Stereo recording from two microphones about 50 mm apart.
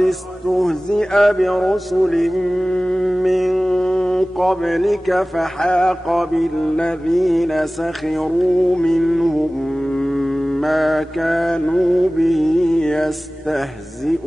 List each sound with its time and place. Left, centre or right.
0.6 s mantra: centre
2.6 s mantra: centre
3.1 s a sound: centre
3.6 s mantra: centre
4.4 s mantra: centre
5.6 s mantra: centre
6.0 s mantra: centre
6.6 s mantra: centre
7.2 s mantra: centre
9.8 s a sound: centre
10.1 s mantra: centre
11.5 s mantra: centre
11.9 s mantra: centre